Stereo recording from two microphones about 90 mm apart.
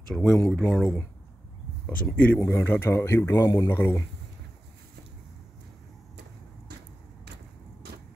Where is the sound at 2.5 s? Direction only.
30° left (ahead or behind).